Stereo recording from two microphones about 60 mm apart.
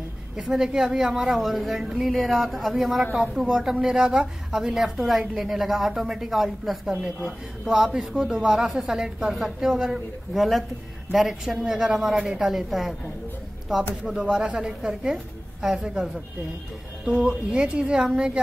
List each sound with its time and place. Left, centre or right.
0.4 s a woman's voice: centre
6.9 s a man's voice: centre
14.3 s a man's voice: centre